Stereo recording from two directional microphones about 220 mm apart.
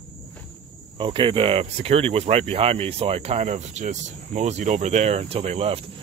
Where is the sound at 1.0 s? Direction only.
20° right (ahead or behind).